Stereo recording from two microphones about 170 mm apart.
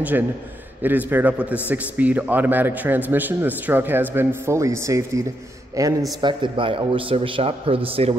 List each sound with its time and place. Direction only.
0.8 s a man's voice: 10° right (ahead or behind)
6.2 s a man's voice: 30° right (ahead or behind)